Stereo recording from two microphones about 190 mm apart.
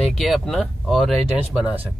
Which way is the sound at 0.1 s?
Centre (ahead or behind).